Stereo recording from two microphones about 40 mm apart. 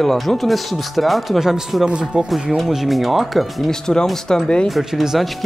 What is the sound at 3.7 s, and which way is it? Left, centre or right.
Speech, centre.